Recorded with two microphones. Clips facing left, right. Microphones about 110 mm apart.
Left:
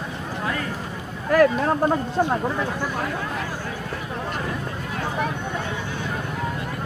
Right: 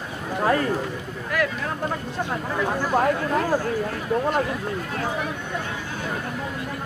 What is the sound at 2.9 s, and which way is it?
Speech, 40° right (ahead or behind).